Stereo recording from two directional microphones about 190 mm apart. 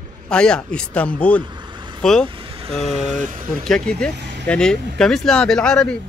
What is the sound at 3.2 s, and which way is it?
Speech, 45° right (ahead or behind).